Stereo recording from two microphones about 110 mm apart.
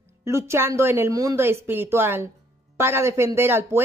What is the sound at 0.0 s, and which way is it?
A woman's voice, 25° right (ahead or behind).